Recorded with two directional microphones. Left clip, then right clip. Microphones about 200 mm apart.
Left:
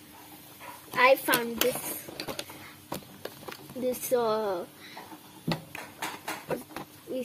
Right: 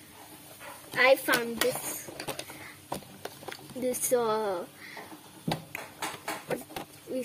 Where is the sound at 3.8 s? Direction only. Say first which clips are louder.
Even; 60° right (ahead or behind).